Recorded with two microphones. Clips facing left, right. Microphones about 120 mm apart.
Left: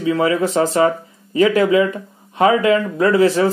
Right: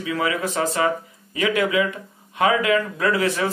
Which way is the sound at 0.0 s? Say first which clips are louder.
Left 7 dB; 30° left (ahead or behind).